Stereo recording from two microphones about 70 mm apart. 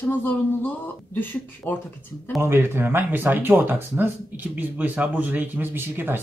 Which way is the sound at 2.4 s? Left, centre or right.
Right.